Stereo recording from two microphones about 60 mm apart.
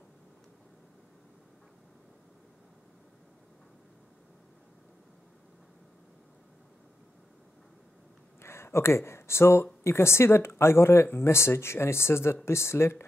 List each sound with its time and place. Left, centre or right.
8.4 s speech: left